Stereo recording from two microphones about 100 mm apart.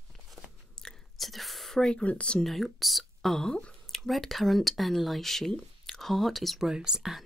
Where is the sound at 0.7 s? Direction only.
5° left (ahead or behind).